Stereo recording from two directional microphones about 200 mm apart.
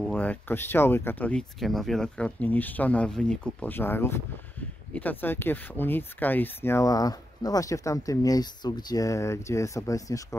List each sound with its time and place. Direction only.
0.0 s speech: 5° left (ahead or behind)